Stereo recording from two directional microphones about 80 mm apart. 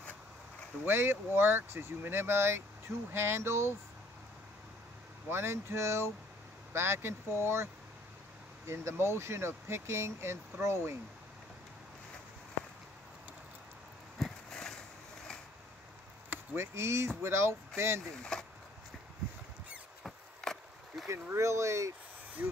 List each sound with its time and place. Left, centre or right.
0.8 s speech: right
5.3 s speech: right
14.1 s a sound: centre
16.5 s speech: right
18.3 s chop: centre
20.0 s chop: centre
21.1 s speech: right
22.4 s speech: centre